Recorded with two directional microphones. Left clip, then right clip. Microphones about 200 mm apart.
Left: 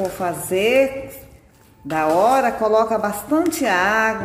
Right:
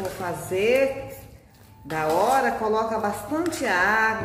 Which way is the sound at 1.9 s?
50° left (ahead or behind).